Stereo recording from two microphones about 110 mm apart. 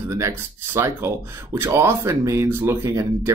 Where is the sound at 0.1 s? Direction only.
25° right (ahead or behind).